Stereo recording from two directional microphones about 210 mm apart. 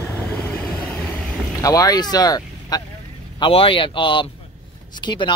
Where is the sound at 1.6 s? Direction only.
15° left (ahead or behind).